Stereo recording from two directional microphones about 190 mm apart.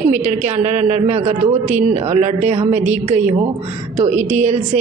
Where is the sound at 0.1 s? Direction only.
40° right (ahead or behind).